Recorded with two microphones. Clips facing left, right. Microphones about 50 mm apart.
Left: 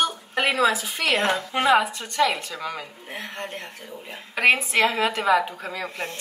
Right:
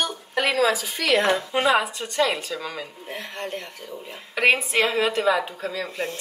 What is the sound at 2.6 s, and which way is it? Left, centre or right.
Speech, centre.